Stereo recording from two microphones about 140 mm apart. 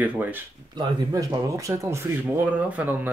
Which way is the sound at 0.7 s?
25° right (ahead or behind).